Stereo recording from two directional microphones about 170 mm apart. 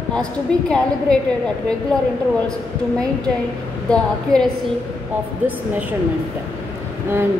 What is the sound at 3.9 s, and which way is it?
Speech, 5° left (ahead or behind).